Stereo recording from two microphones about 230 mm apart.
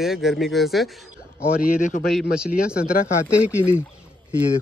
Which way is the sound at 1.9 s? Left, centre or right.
Left.